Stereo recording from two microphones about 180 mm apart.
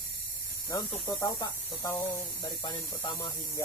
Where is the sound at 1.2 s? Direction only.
20° left (ahead or behind).